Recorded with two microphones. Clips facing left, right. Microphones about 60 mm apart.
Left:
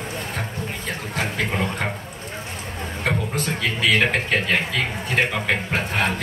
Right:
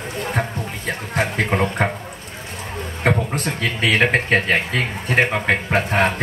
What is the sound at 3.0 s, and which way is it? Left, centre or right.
Speech, right.